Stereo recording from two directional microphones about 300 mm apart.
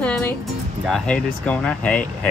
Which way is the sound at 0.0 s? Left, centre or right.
Centre.